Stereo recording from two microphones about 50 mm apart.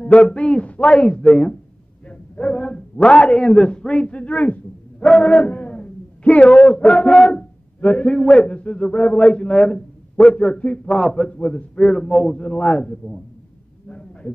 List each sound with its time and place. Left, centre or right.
0.0 s a man's voice: left
7.8 s a man's voice: left
11.0 s a man's voice: centre
11.3 s a man's voice: left
11.7 s a man's voice: centre
13.8 s a sound: left